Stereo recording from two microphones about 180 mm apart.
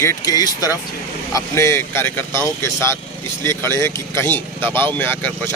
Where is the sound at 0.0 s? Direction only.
15° left (ahead or behind).